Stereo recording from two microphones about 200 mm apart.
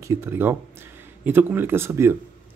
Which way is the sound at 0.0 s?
15° right (ahead or behind).